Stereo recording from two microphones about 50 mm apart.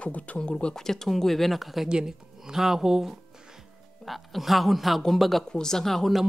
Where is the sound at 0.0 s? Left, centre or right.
Left.